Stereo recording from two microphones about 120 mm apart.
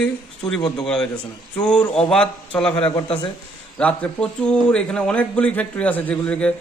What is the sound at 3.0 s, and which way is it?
Speech, 45° left (ahead or behind).